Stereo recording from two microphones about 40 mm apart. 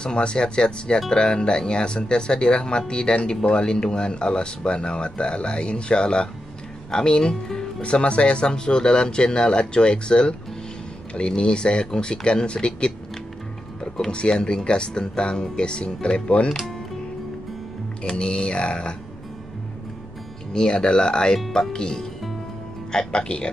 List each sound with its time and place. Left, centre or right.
0.0 s speech: left
7.8 s speech: left
13.9 s speech: left
18.0 s speech: left
20.5 s speech: centre